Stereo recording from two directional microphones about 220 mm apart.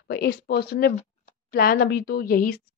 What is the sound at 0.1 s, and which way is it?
A woman's voice, 45° left (ahead or behind).